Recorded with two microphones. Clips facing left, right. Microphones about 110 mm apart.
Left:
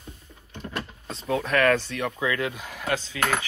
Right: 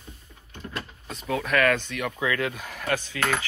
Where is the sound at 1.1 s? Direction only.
30° left (ahead or behind).